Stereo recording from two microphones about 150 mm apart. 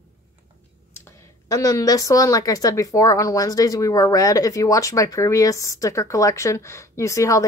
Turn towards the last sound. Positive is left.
turn(degrees=20)  # may be behind; listen again after turning